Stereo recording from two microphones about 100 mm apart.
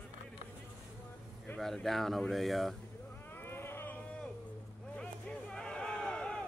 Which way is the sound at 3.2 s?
20° left (ahead or behind).